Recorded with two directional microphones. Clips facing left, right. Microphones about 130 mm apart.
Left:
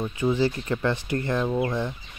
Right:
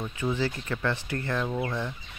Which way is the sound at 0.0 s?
15° left (ahead or behind).